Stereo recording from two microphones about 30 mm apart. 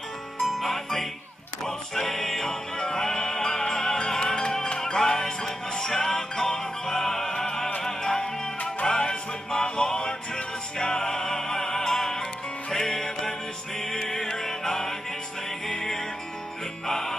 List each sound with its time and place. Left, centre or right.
0.5 s music: centre
2.0 s music: centre
2.4 s music: left
8.8 s music: left; by 13.3 s centre
14.4 s music: centre